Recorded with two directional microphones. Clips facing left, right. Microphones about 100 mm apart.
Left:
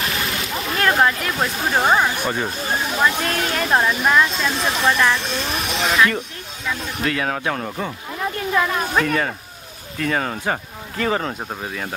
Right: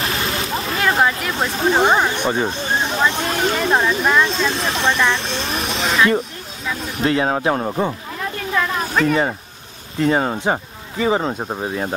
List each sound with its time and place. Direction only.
0.0 s a sound: 35° right (ahead or behind)
0.7 s a sound: 5° right (ahead or behind)
1.9 s speech: 5° left (ahead or behind)
2.2 s snake: 25° right (ahead or behind)
3.2 s speech: 25° right (ahead or behind)
3.4 s speech: centre (ahead or behind)
7.0 s speech: 25° right (ahead or behind)
8.5 s a sound: 5° left (ahead or behind)
9.0 s speech: 20° right (ahead or behind)